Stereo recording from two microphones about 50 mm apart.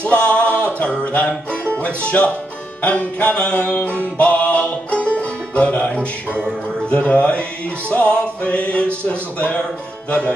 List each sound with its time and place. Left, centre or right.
0.0 s music: left
5.9 s music: centre